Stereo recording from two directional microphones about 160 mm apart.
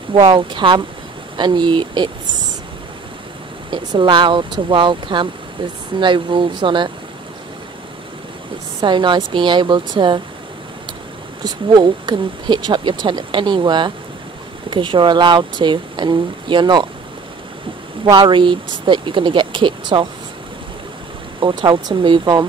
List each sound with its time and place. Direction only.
0.1 s speech: 30° right (ahead or behind)
3.7 s speech: 30° right (ahead or behind)
8.8 s speech: 30° right (ahead or behind)
11.4 s speech: 25° right (ahead or behind)
18.0 s speech: 30° right (ahead or behind)
21.4 s speech: 30° right (ahead or behind)